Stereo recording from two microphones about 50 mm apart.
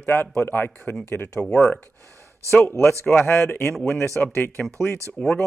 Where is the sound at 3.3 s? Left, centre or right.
Left.